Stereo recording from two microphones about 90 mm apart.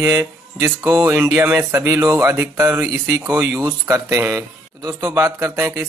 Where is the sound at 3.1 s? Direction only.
40° right (ahead or behind).